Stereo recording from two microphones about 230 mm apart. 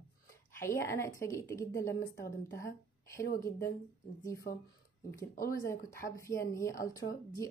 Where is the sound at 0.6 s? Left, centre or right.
Centre.